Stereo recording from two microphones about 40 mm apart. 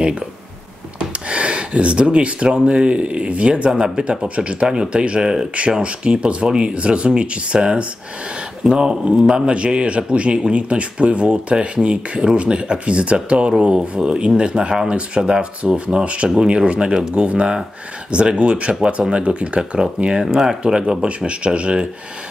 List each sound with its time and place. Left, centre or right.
0.9 s a sound: right
2.6 s speech: right
3.7 s speech: centre
20.1 s speech: centre